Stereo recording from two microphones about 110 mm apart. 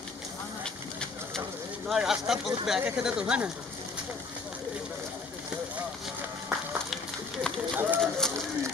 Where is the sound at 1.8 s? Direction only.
5° right (ahead or behind).